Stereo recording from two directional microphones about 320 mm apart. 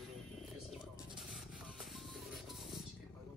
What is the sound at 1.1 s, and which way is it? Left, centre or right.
Music, centre.